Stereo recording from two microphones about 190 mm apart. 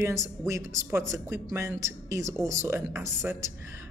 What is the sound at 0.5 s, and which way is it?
Speech, 15° right (ahead or behind).